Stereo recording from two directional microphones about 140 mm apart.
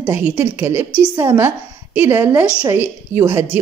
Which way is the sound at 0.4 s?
15° right (ahead or behind).